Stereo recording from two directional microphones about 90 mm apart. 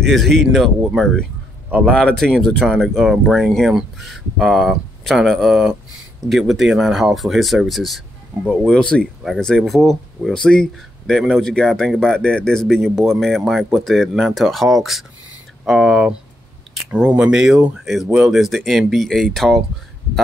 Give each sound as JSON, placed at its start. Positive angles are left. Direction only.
{"t": 0.1, "sound": "speech", "side_deg": 5}